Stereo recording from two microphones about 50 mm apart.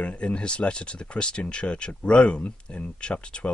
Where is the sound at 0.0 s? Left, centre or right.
Left.